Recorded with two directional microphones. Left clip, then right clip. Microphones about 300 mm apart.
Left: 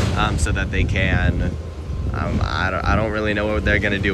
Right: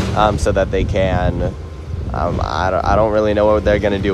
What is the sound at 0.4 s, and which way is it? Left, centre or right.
Speech, centre.